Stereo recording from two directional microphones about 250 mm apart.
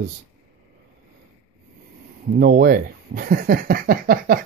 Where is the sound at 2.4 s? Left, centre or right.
Right.